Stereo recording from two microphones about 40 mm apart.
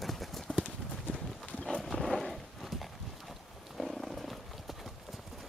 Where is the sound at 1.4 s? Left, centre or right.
Centre.